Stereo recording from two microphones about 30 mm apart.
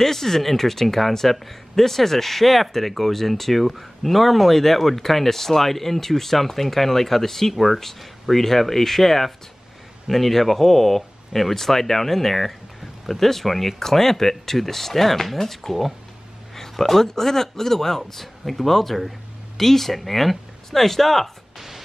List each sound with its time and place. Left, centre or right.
0.0 s speech: centre
21.5 s music: centre